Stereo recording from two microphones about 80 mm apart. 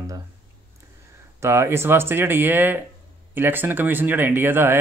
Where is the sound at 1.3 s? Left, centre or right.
Right.